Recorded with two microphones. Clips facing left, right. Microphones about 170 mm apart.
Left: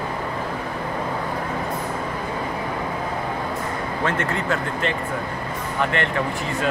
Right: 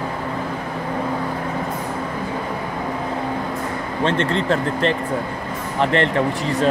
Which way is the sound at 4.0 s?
25° right (ahead or behind).